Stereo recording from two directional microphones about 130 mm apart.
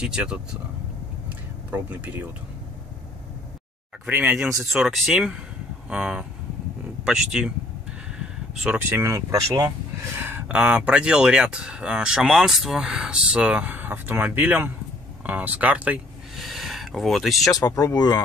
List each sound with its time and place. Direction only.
0.0 s speech: 5° right (ahead or behind)
1.7 s speech: 15° right (ahead or behind)
4.0 s speech: 15° right (ahead or behind)
8.7 s speech: 15° right (ahead or behind); by 17.6 s centre (ahead or behind)
17.6 s speech: 25° left (ahead or behind)